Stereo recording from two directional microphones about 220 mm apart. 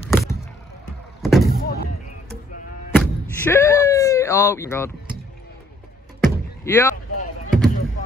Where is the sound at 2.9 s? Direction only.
10° left (ahead or behind).